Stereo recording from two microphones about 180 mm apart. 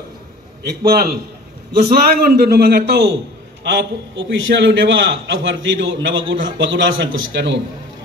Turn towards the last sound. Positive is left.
turn(degrees=-90)